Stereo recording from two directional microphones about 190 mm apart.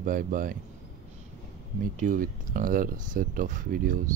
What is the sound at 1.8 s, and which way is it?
Speech, 45° right (ahead or behind).